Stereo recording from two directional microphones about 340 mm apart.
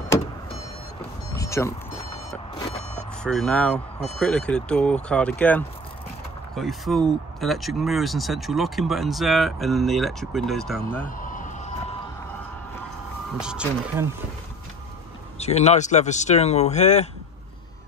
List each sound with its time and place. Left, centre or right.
1.3 s vehicle: centre
3.3 s speech: centre
11.1 s a sound: left
13.4 s speech: centre
15.3 s speech: centre